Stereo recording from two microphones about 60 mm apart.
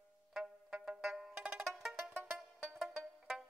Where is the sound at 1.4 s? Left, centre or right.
Centre.